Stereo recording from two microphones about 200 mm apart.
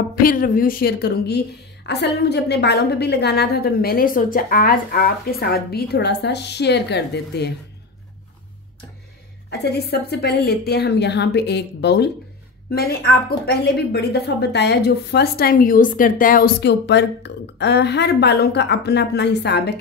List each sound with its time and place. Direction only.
0.1 s a woman's voice: 45° left (ahead or behind)
9.5 s a woman's voice: 55° left (ahead or behind)